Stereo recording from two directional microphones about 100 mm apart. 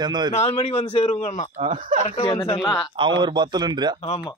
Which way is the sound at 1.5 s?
65° right (ahead or behind).